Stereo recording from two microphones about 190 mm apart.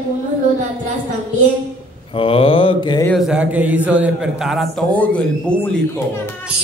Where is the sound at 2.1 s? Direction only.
30° left (ahead or behind).